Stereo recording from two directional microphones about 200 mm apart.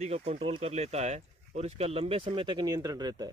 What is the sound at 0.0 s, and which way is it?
Speech, 35° right (ahead or behind).